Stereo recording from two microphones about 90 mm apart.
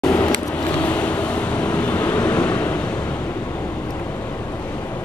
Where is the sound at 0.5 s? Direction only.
50° left (ahead or behind).